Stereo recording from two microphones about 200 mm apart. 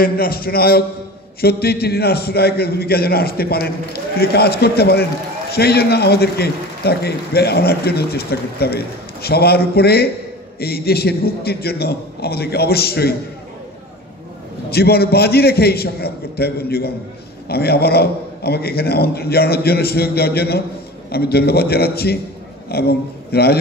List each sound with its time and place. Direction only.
0.0 s a man's voice: 50° left (ahead or behind)
14.7 s a man's voice: 50° left (ahead or behind)